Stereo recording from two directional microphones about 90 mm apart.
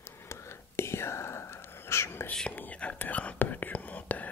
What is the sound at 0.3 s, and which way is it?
Whispering, 30° left (ahead or behind).